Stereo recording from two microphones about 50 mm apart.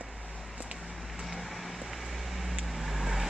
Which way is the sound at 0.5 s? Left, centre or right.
Centre.